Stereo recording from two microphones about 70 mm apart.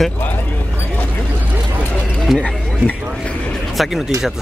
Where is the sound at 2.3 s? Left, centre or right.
Centre.